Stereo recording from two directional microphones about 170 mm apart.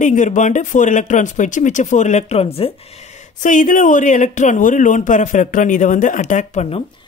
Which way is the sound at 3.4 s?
50° left (ahead or behind).